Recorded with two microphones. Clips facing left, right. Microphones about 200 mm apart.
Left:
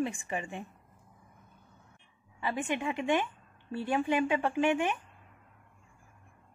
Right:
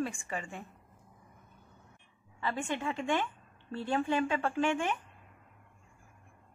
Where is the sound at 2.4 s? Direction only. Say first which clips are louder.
Left 2 dB; 15° left (ahead or behind).